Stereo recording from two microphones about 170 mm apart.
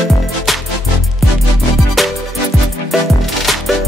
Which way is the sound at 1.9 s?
Centre (ahead or behind).